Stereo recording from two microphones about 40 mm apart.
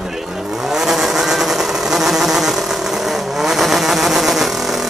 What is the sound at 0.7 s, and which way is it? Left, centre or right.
Insect, centre.